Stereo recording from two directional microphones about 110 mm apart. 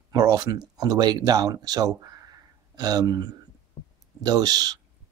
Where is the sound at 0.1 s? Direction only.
35° right (ahead or behind).